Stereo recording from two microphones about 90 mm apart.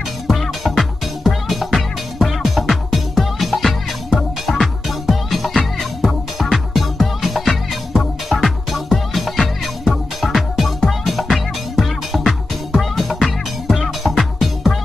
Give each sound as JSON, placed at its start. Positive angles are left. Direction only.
{"t": 0.3, "sound": "music", "side_deg": 0}